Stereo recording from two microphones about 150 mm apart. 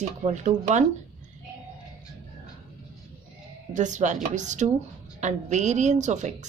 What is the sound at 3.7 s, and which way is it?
Speech, 55° right (ahead or behind).